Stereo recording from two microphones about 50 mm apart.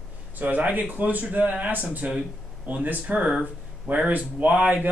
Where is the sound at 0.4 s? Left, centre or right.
Right.